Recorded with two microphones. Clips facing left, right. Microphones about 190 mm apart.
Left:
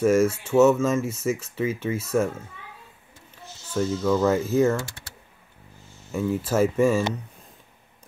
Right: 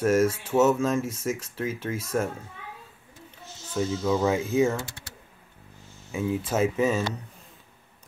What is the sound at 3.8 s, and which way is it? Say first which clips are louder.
Speech: left 3 dB; 5° right (ahead or behind).